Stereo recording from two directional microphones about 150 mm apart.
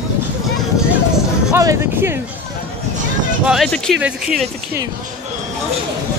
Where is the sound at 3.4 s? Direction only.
5° right (ahead or behind).